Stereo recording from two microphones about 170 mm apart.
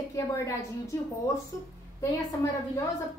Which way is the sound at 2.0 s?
20° left (ahead or behind).